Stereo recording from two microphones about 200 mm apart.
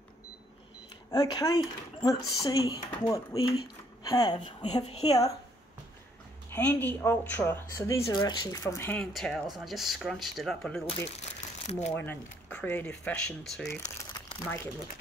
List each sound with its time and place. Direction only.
1.1 s speech: 20° left (ahead or behind)
4.6 s a woman's voice: 30° left (ahead or behind)
6.5 s speech: 10° left (ahead or behind)
11.1 s crumpling: 30° left (ahead or behind)
11.9 s speech: 10° left (ahead or behind)
13.7 s speech: 15° left (ahead or behind)